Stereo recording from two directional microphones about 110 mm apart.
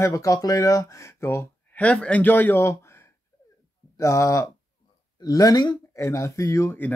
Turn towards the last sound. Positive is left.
turn(degrees=30)  # may be behind; listen again after turning